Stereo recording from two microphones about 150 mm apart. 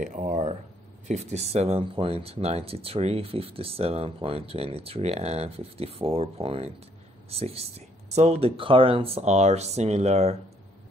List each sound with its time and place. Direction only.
0.0 s speech: 60° right (ahead or behind)